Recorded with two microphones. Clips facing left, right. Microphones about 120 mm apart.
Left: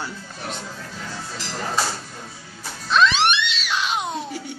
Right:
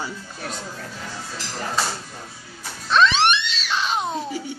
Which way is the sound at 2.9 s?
Centre (ahead or behind).